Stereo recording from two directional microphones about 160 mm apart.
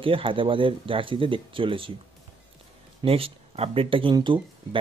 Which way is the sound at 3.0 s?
35° right (ahead or behind).